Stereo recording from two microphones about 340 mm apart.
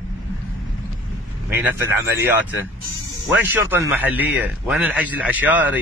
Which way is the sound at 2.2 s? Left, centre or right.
Centre.